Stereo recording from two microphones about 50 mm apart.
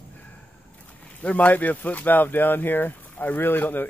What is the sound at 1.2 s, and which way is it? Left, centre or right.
Speech, left.